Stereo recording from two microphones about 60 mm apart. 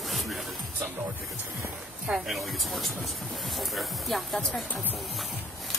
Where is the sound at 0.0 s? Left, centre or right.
Centre.